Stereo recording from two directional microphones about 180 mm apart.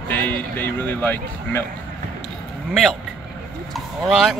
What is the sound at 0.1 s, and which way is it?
Speech, 10° left (ahead or behind).